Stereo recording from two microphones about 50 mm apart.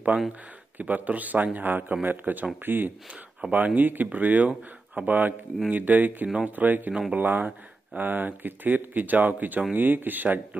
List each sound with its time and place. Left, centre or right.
0.3 s speech: right
6.2 s speech: right
6.5 s speech: right
6.9 s speech: centre
7.2 s speech: right